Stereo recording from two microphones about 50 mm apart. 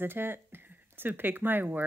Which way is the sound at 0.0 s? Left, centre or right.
Right.